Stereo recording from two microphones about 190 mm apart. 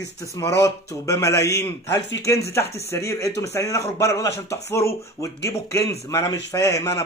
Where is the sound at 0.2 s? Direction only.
15° left (ahead or behind).